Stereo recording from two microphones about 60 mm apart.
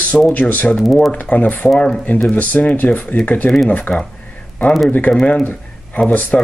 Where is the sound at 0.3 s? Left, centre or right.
Left.